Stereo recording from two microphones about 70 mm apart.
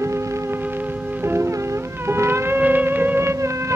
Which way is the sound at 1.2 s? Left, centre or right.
Right.